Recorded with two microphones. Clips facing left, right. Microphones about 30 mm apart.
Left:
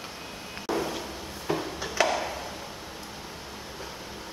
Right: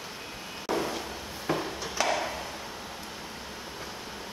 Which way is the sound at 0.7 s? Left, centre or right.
Centre.